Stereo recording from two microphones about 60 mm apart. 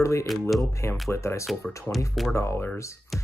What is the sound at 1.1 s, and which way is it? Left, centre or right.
Speech, left.